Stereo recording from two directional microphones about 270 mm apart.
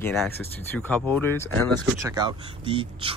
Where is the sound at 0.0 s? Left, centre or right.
Centre.